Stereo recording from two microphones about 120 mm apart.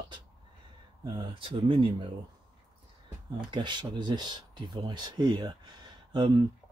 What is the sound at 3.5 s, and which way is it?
Speech, 40° right (ahead or behind).